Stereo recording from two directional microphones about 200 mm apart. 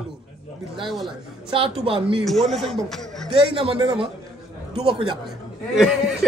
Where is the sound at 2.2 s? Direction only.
Centre (ahead or behind).